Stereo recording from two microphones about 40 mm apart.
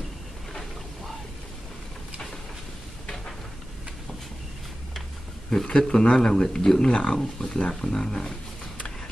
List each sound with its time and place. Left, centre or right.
5.7 s speech: centre